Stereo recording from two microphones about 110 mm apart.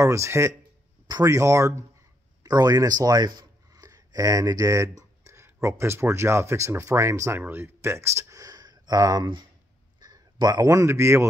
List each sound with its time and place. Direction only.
0.0 s speech: 25° right (ahead or behind)